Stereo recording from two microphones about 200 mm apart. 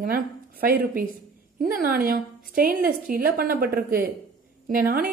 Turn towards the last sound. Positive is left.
turn(degrees=-45)  # may be behind; listen again after turning